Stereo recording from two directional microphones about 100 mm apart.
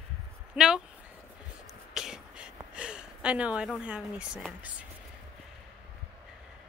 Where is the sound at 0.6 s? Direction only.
10° right (ahead or behind).